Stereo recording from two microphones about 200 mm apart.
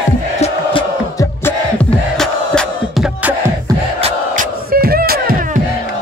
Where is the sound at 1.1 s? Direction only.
15° left (ahead or behind).